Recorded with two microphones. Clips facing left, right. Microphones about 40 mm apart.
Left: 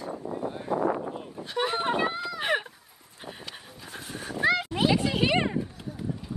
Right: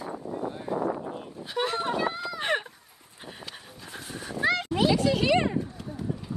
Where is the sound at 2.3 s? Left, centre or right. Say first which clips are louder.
Left 1 dB; centre.